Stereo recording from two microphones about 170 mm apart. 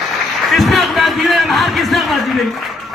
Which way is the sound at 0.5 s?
Centre (ahead or behind).